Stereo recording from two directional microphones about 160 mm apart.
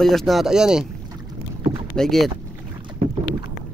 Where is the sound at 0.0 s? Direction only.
Centre (ahead or behind).